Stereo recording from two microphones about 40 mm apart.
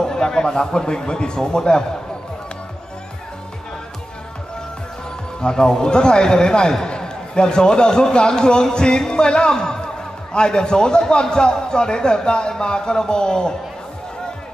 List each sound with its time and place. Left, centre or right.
0.0 s a man's voice: centre
5.4 s a man's voice: centre